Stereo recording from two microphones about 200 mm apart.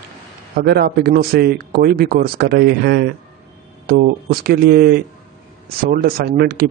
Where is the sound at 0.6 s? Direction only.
55° right (ahead or behind).